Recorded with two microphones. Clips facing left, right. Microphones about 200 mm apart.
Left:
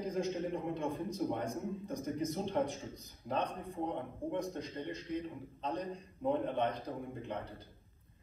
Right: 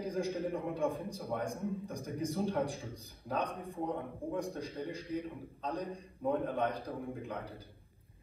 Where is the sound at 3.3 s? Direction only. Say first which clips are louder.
Even; 15° right (ahead or behind).